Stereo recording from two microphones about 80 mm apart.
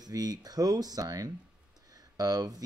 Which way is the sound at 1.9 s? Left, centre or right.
Right.